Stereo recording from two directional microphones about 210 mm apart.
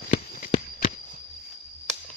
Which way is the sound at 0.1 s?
40° left (ahead or behind).